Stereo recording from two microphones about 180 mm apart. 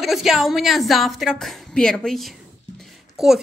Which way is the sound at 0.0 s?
Centre (ahead or behind).